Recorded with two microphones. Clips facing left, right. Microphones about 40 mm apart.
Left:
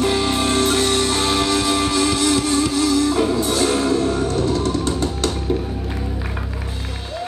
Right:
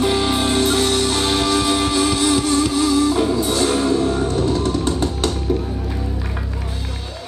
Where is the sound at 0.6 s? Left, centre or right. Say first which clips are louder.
Even; centre.